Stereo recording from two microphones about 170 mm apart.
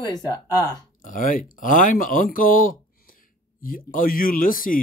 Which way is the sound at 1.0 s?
50° left (ahead or behind).